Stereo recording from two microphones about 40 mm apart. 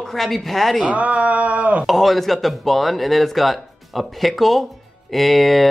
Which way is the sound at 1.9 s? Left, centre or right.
Centre.